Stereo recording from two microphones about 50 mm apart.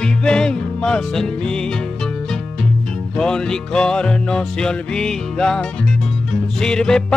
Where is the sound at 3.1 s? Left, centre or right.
Centre.